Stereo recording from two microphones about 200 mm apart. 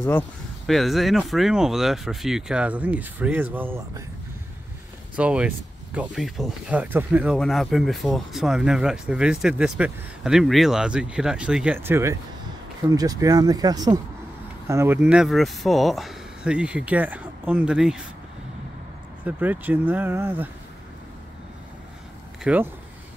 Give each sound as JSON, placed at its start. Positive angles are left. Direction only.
{"t": 0.7, "sound": "speech", "side_deg": 0}
{"t": 5.1, "sound": "speech", "side_deg": -5}
{"t": 19.2, "sound": "speech", "side_deg": -10}
{"t": 22.4, "sound": "speech", "side_deg": -5}